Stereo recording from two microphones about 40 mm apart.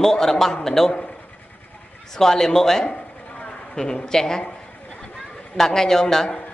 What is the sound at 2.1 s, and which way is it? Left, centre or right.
A woman's voice, centre.